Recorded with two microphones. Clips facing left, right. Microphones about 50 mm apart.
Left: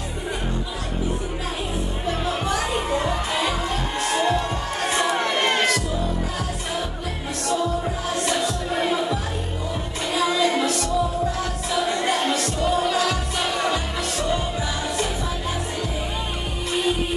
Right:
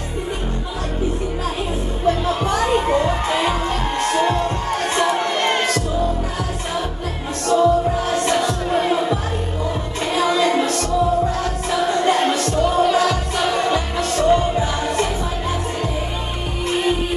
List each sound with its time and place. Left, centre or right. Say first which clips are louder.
2.0 s music: right 7 dB; right
7.4 s music: right 9 dB; right